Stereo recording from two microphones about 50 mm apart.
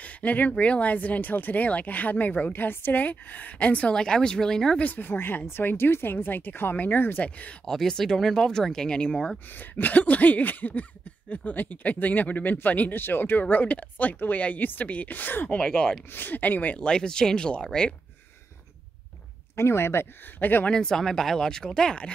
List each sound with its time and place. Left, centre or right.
0.0 s speech: left
3.9 s speech: centre
4.7 s speech: left
7.2 s speech: left
7.6 s speech: centre
9.6 s speech: left
15.5 s speech: centre
16.1 s speech: left
16.7 s speech: centre
19.5 s speech: left
20.3 s speech: left
20.7 s speech: centre